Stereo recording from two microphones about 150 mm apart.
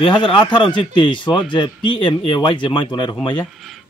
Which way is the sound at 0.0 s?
35° left (ahead or behind).